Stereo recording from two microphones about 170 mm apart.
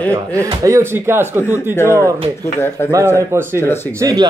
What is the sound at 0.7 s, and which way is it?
Speech, 15° right (ahead or behind).